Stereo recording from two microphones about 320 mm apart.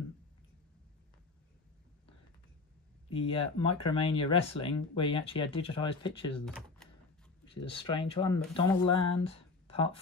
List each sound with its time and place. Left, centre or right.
3.1 s speech: centre
6.4 s speech: centre
7.6 s speech: centre